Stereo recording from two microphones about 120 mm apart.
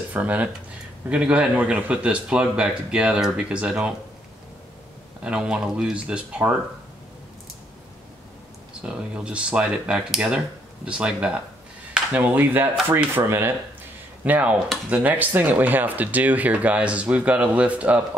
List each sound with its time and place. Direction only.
0.1 s speech: 10° right (ahead or behind)
5.2 s speech: 5° right (ahead or behind)
8.8 s speech: 10° right (ahead or behind)